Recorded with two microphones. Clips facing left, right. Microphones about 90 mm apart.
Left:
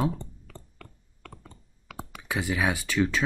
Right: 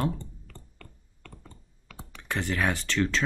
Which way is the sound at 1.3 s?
90° left.